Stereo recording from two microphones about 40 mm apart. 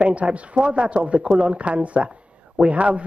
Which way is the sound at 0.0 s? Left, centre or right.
Right.